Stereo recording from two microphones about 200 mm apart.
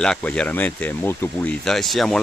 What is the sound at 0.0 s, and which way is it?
Speech, 5° left (ahead or behind).